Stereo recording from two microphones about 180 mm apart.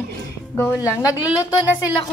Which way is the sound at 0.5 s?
15° left (ahead or behind).